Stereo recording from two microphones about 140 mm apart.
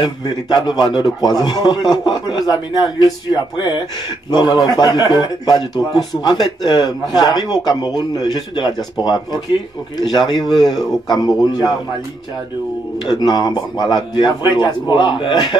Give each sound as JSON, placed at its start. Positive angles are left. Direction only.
{"t": 0.0, "sound": "a man's voice", "side_deg": 30}
{"t": 13.0, "sound": "a man's voice", "side_deg": 30}